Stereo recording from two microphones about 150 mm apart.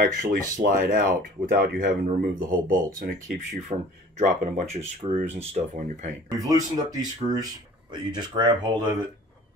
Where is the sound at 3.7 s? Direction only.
55° right (ahead or behind).